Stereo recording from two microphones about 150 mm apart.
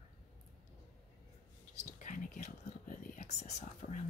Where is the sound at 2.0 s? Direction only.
55° left (ahead or behind).